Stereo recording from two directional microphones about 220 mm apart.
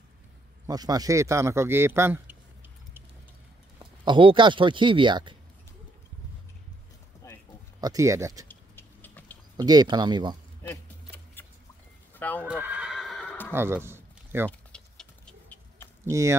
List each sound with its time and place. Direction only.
0.7 s a man's voice: 15° right (ahead or behind)
3.8 s speech: 20° right (ahead or behind)
7.2 s a sound: 15° left (ahead or behind)
7.8 s a man's voice: 15° right (ahead or behind)
8.5 s a sound: 10° left (ahead or behind)
9.6 s speech: 20° right (ahead or behind)
10.6 s keys jangling: 10° left (ahead or behind)
12.2 s speech: 5° left (ahead or behind)
12.4 s horse: 5° right (ahead or behind)
13.5 s a sound: 10° right (ahead or behind)
14.7 s a sound: 5° left (ahead or behind)
16.1 s a man's voice: 15° right (ahead or behind)